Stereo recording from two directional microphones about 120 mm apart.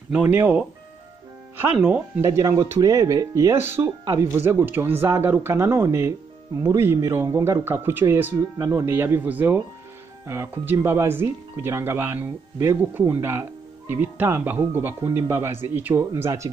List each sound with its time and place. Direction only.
0.1 s speech: 15° right (ahead or behind)